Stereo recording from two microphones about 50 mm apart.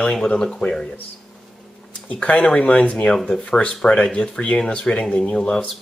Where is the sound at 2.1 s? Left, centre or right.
Left.